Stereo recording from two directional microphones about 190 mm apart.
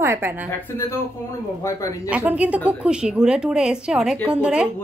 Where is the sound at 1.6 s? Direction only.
15° left (ahead or behind).